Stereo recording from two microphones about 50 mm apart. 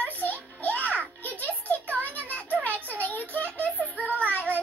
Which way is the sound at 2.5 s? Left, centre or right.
Right.